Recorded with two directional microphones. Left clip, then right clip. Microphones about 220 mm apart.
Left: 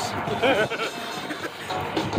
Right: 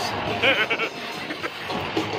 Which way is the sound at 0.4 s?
40° left (ahead or behind).